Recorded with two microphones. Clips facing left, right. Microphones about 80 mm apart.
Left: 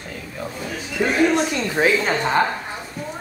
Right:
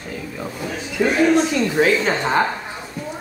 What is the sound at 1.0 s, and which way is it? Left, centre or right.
Speech, left.